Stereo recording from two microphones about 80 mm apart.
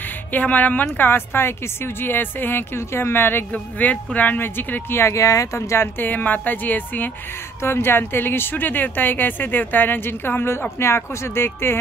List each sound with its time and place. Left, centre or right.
0.3 s speech: centre